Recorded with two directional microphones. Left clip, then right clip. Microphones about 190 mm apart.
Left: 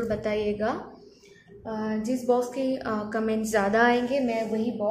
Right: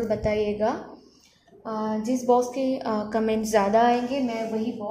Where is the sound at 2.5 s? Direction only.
10° right (ahead or behind).